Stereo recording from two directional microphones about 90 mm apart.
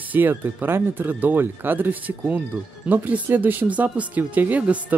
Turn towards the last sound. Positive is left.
turn(degrees=-15)  # may be behind; listen again after turning